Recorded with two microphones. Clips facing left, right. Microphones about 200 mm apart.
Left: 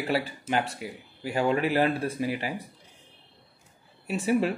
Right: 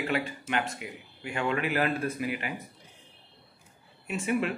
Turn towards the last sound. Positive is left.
turn(degrees=35)  # may be behind; listen again after turning